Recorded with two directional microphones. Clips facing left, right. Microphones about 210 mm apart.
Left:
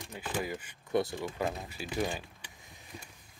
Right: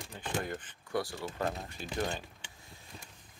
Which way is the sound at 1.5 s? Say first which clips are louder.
Left 1 dB; 5° left (ahead or behind).